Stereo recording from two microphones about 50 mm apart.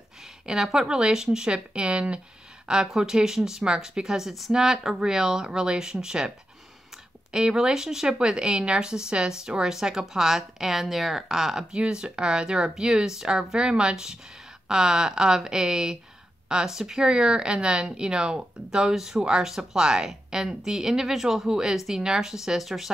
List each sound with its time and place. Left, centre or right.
0.5 s speech: centre
7.3 s speech: centre
11.7 s speech: centre